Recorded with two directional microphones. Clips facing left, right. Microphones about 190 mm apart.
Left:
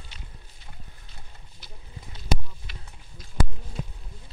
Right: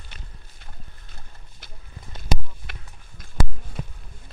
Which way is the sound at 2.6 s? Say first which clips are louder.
Right 2 dB; 60° right (ahead or behind).